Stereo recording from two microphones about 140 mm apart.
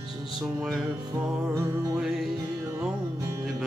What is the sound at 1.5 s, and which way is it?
Music, 20° right (ahead or behind).